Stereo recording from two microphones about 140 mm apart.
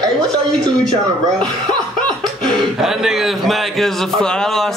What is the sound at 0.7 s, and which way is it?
Speech, 30° right (ahead or behind).